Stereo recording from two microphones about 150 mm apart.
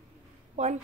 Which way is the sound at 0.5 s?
50° right (ahead or behind).